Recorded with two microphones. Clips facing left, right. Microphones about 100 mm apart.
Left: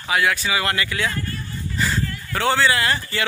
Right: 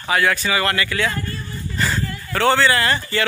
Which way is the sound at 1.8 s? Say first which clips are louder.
Right 1 dB; centre (ahead or behind).